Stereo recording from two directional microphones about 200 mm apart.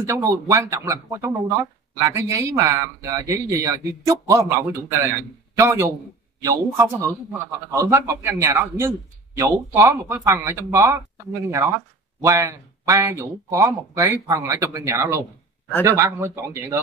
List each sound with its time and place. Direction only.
0.0 s speech: 15° right (ahead or behind)